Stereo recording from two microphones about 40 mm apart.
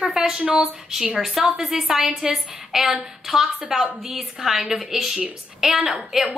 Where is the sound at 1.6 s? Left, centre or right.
Centre.